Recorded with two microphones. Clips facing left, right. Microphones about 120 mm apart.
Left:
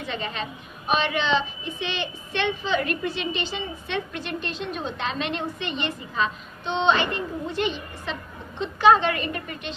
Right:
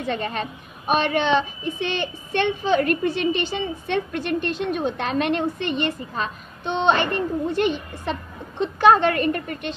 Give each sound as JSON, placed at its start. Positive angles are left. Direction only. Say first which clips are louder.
{"t": 0.0, "sound": "a woman's voice", "louder": "right 5 dB", "side_deg": -50}